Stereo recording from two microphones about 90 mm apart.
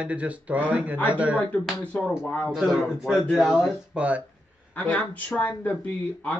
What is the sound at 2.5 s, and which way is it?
Speech, centre (ahead or behind).